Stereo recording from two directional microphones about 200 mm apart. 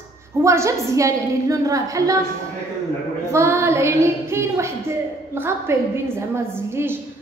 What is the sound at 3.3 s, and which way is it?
Speech, 15° right (ahead or behind).